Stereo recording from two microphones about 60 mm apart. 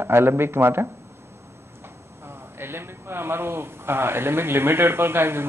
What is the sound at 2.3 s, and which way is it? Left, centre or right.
A man's voice, right.